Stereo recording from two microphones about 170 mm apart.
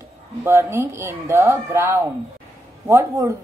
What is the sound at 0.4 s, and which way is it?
A woman's voice, 15° right (ahead or behind).